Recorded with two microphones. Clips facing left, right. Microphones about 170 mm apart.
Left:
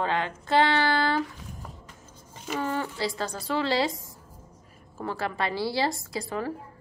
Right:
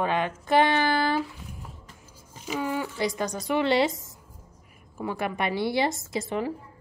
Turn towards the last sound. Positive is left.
turn(degrees=-20)  # may be behind; listen again after turning